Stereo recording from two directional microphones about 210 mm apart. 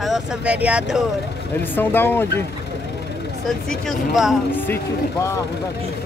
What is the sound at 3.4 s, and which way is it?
Speech, centre (ahead or behind).